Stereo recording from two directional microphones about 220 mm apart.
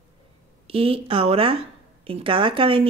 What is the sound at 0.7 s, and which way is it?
Speech, 25° right (ahead or behind).